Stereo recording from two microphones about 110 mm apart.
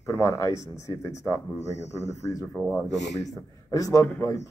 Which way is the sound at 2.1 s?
30° left (ahead or behind).